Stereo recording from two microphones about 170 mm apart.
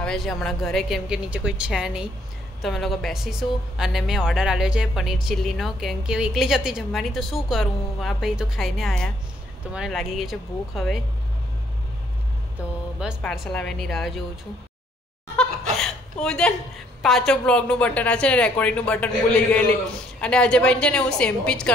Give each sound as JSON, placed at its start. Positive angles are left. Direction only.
{"t": 0.0, "sound": "a woman's voice", "side_deg": 0}
{"t": 13.2, "sound": "a woman's voice", "side_deg": 0}
{"t": 15.3, "sound": "laughter", "side_deg": 5}
{"t": 17.0, "sound": "a woman's voice", "side_deg": 5}